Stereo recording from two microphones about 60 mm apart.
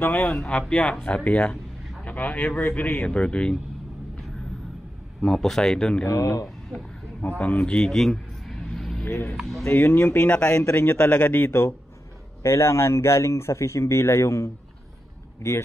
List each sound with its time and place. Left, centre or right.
0.0 s speech: left
0.5 s speech: centre
5.2 s speech: centre
6.0 s speech: left
7.2 s speech: left
7.7 s a sound: centre
9.0 s speech: left
9.4 s speech: centre
9.8 s speech: left